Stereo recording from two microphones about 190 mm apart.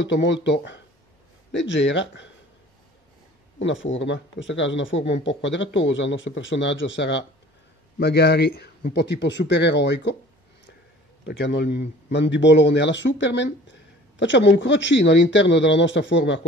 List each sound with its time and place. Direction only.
0.0 s a man's voice: 70° left (ahead or behind)
3.5 s a man's voice: 80° left
11.2 s a man's voice: 70° left (ahead or behind)